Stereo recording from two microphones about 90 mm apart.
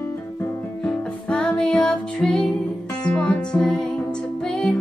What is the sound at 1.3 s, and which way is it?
Music, 10° left (ahead or behind).